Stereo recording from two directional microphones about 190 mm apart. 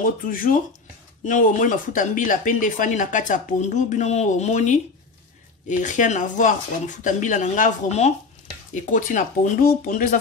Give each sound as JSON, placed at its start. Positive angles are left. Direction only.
{"t": 0.0, "sound": "speech", "side_deg": 45}